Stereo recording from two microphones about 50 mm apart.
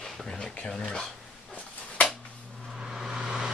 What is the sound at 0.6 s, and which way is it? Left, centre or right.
Speech, centre.